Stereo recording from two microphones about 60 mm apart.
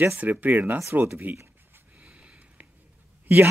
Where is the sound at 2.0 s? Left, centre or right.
Right.